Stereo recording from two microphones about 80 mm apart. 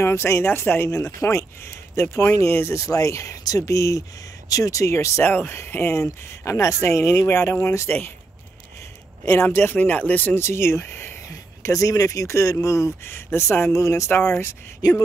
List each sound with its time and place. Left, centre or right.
0.0 s speech: left
9.2 s speech: left
10.4 s speech: left